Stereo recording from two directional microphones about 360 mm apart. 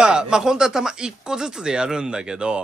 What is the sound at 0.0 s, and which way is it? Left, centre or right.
Speech, centre.